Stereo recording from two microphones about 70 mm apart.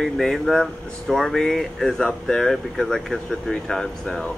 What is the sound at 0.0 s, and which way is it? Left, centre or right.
Speech, centre.